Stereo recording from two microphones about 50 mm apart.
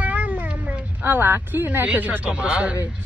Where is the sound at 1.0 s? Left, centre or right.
Right.